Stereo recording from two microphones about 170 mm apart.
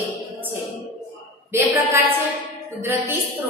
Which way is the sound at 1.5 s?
15° right (ahead or behind).